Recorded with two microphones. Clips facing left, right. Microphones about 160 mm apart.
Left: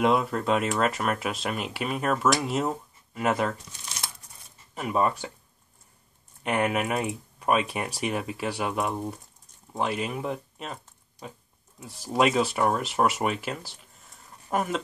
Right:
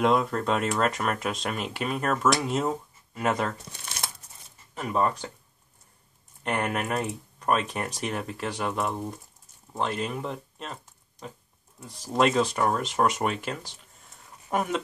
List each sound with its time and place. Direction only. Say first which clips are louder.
0.0 s speech: even; 5° left (ahead or behind)
3.7 s speech: right 2 dB; 60° right (ahead or behind)
4.7 s speech: left 1 dB; 10° left (ahead or behind)
6.4 s speech: left 3 dB; 5° left (ahead or behind)